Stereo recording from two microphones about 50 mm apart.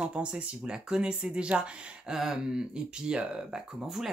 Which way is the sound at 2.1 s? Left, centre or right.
Centre.